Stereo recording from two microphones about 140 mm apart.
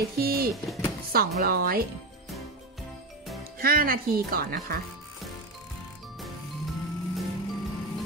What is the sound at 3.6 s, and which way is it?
Speech, 90° right.